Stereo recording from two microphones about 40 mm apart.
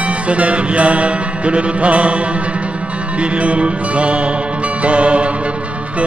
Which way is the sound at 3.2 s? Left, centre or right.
Right.